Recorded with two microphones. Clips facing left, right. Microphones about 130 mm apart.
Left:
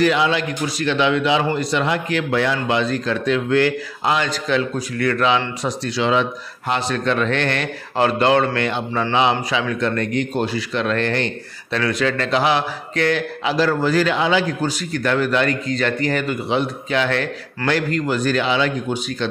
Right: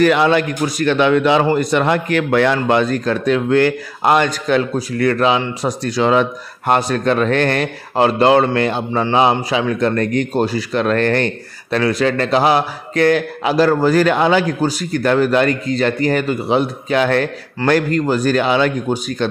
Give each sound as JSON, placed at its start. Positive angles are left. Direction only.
{"t": 0.0, "sound": "a man's voice", "side_deg": -55}
{"t": 4.7, "sound": "a man's voice", "side_deg": -35}
{"t": 5.6, "sound": "a man's voice", "side_deg": -45}
{"t": 11.8, "sound": "a man's voice", "side_deg": -35}